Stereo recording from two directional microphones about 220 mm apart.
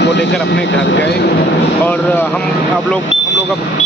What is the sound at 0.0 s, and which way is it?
Speech, 50° left (ahead or behind).